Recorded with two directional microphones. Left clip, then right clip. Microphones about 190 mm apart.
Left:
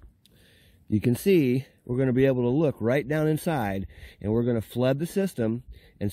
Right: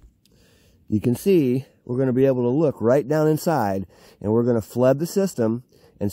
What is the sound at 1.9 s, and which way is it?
Speech, 20° left (ahead or behind).